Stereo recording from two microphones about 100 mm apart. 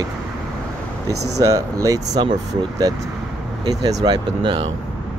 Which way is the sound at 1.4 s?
35° right (ahead or behind).